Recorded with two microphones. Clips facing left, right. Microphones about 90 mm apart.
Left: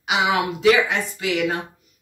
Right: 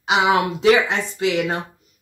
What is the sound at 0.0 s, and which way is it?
Speech, 35° right (ahead or behind).